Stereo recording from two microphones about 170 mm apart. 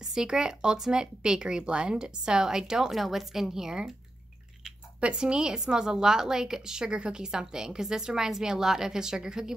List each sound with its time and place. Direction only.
0.0 s speech: 5° right (ahead or behind)